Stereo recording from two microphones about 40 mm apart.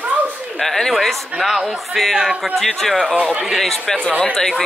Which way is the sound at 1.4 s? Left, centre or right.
Centre.